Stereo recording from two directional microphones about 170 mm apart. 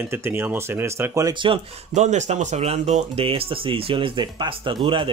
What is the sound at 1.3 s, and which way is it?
Speech, 30° right (ahead or behind).